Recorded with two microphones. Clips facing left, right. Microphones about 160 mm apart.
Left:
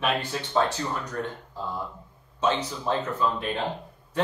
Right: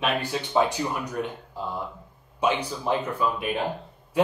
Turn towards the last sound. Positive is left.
turn(degrees=-10)  # may be behind; listen again after turning